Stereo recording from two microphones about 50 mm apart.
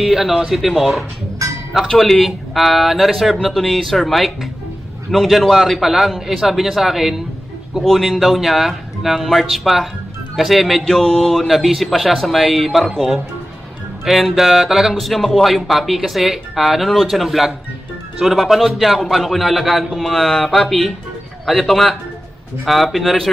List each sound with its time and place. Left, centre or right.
0.0 s speech: centre
1.4 s a sound: right
2.0 s speech: centre
10.8 s mantra: centre
11.4 s speech: centre
16.9 s mantra: centre
17.2 s speech: centre